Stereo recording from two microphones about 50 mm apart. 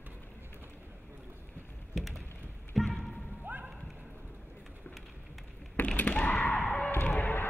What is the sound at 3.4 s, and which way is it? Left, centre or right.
Music, right.